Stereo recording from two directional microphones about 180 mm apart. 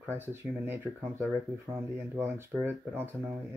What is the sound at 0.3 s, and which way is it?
Speech, 10° right (ahead or behind).